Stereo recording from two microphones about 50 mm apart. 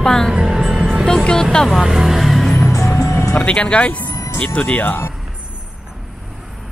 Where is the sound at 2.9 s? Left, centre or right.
Left.